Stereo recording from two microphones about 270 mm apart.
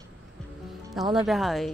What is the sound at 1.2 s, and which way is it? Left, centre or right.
Music, centre.